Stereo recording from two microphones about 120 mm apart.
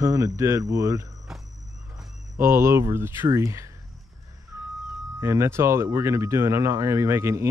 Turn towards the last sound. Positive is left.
turn(degrees=-20)  # may be behind; listen again after turning